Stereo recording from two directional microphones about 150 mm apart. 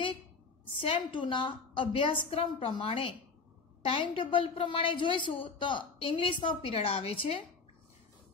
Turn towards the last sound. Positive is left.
turn(degrees=40)  # may be behind; listen again after turning